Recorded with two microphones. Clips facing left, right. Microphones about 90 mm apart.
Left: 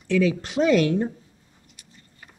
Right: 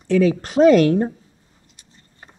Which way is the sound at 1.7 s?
35° right (ahead or behind).